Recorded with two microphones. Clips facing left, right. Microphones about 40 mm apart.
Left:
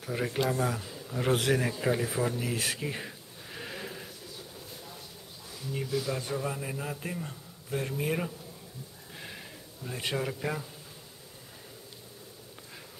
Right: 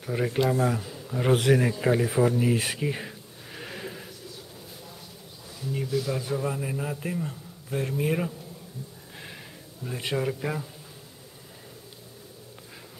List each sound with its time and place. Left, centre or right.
0.0 s a man's voice: centre
5.6 s a man's voice: centre
9.8 s a man's voice: centre